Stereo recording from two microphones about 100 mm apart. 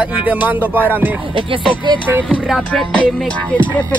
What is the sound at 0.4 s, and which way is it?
Music, 15° right (ahead or behind).